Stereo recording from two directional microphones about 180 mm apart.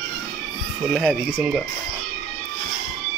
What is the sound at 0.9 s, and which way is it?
Speech, centre (ahead or behind).